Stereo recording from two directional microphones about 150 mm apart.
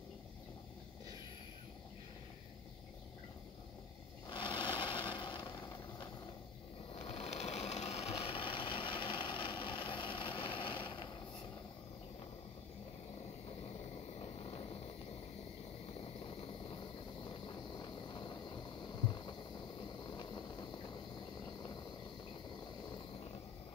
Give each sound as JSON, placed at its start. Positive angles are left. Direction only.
{"t": 4.3, "sound": "a sound", "side_deg": 30}
{"t": 6.9, "sound": "engine", "side_deg": 40}
{"t": 14.2, "sound": "vehicle", "side_deg": 40}
{"t": 16.0, "sound": "vehicle", "side_deg": 40}